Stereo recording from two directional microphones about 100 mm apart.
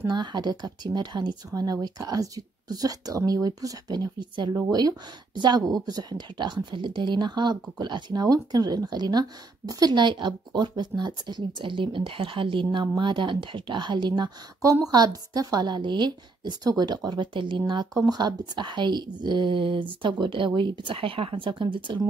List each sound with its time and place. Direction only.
0.1 s speech: 45° right (ahead or behind)
4.6 s a woman's voice: 40° right (ahead or behind)
14.6 s a woman's voice: 35° right (ahead or behind); by 22.0 s 55° right (ahead or behind)